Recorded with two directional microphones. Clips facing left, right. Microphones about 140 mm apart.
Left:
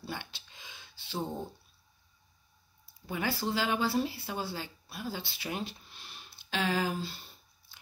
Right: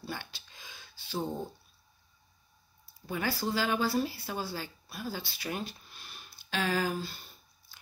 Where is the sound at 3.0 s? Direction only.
20° left (ahead or behind).